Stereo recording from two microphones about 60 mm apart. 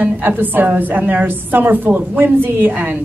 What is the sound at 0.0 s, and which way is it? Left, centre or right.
A woman's voice, right.